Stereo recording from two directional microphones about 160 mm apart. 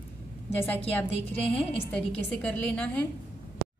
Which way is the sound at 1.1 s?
40° left (ahead or behind).